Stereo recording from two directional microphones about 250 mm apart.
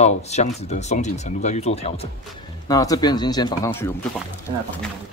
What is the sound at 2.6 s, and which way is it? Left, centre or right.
Speech, centre.